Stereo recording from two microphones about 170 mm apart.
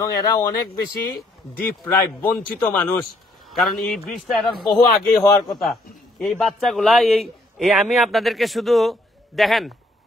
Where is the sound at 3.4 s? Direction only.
Centre (ahead or behind).